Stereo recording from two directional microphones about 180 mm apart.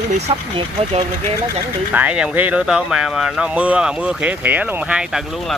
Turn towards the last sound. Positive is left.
turn(degrees=-10)  # may be behind; listen again after turning